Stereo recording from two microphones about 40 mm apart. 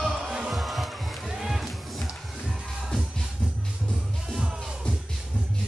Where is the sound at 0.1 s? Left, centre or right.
Centre.